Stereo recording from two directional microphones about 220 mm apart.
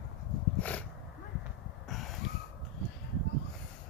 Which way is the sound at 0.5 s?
5° left (ahead or behind).